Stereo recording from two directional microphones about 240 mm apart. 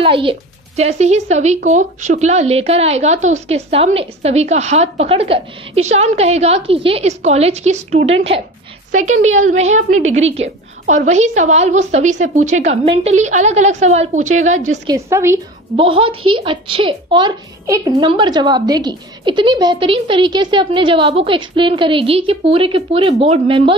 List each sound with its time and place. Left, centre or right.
0.0 s speech: right
14.9 s a woman's voice: centre
15.7 s speech: right